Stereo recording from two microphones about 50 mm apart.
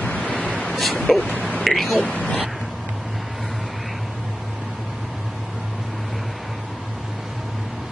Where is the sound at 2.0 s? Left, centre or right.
Left.